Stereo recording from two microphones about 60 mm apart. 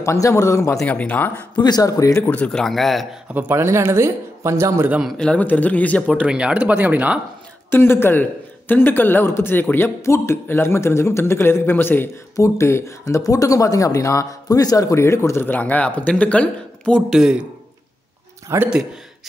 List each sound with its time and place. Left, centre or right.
0.0 s speech: left
0.8 s speech: left
1.8 s speech: left
2.2 s speech: left
2.5 s a man's voice: centre
3.5 s a man's voice: right
5.1 s speech: centre
5.4 s speech: left
6.1 s speech: centre
7.7 s a man's voice: left
12.4 s a man's voice: left
13.0 s speech: left; by 17.0 s centre
17.1 s speech: centre
18.5 s a man's voice: right